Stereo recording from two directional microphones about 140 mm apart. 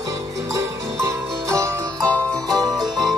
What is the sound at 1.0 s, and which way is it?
Music, 20° right (ahead or behind).